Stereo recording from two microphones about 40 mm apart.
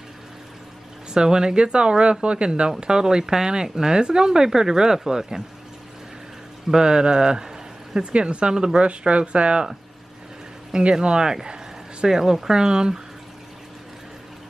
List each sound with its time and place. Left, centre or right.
1.1 s speech: centre
6.7 s speech: centre
8.1 s speech: right
10.8 s speech: right